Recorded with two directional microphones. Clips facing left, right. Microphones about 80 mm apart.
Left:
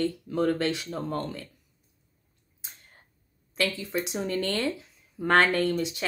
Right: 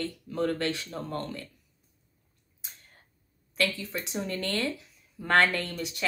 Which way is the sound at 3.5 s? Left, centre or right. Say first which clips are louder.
Left 2 dB; left.